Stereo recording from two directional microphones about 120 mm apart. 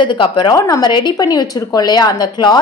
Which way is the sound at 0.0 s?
45° left (ahead or behind).